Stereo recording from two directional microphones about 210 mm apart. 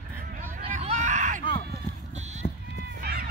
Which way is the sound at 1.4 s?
25° left (ahead or behind).